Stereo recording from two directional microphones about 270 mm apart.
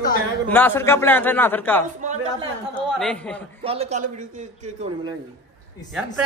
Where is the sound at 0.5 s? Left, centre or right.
Centre.